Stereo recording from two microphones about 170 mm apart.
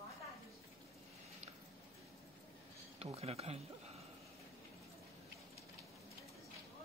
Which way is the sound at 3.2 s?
35° right (ahead or behind).